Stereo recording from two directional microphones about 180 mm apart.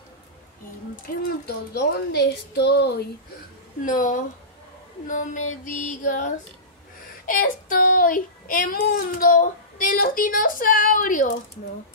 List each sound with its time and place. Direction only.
1.1 s child singing: 55° left (ahead or behind)
1.7 s speech: 65° left (ahead or behind)
3.8 s child singing: 45° left (ahead or behind)